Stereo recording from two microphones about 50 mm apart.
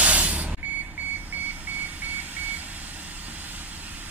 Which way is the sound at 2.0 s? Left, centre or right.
Right.